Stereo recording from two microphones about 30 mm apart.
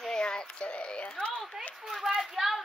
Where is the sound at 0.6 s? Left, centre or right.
Left.